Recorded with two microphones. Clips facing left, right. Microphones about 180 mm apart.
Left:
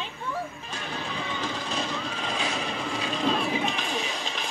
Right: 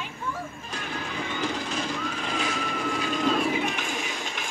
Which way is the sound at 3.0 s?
30° left (ahead or behind).